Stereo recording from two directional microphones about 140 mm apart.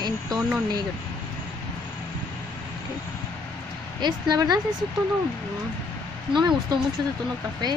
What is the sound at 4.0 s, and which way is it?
Speech, 30° right (ahead or behind).